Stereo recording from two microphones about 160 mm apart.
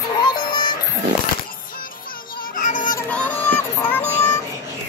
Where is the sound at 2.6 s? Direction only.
55° left (ahead or behind).